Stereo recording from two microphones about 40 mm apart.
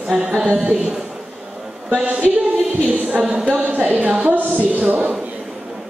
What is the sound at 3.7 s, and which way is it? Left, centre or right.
A woman's voice, right.